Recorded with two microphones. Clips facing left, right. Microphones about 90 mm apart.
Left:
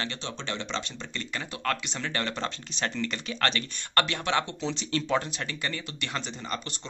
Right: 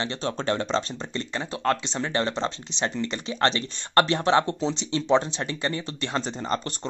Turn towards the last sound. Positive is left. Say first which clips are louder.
# right 7 dB
turn(degrees=-35)  # may be behind; listen again after turning